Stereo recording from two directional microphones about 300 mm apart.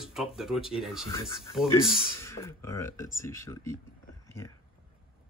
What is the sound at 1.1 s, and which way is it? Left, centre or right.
Speech, centre.